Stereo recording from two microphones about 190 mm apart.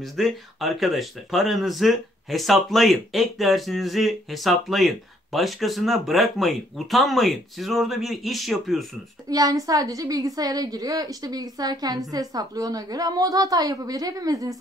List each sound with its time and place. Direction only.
0.0 s speech: centre (ahead or behind)
9.3 s a woman's voice: 20° right (ahead or behind)